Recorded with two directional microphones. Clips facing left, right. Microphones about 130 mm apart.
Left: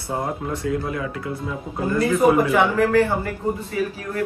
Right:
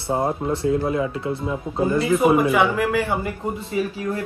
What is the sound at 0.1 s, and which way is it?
Speech, 30° right (ahead or behind).